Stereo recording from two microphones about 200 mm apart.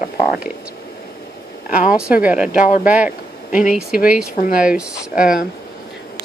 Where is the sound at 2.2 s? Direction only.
5° right (ahead or behind).